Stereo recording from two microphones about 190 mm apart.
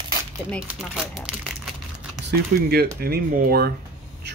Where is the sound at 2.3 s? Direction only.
55° right (ahead or behind).